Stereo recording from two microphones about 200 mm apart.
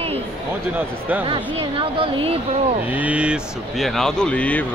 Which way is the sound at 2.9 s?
5° right (ahead or behind).